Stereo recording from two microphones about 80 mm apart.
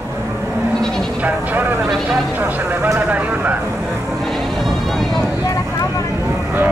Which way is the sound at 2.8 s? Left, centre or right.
Centre.